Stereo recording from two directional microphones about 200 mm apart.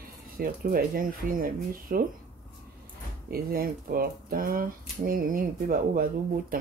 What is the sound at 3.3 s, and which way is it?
Speech, 45° right (ahead or behind).